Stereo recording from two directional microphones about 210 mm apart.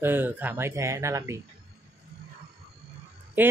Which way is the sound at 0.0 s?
10° right (ahead or behind).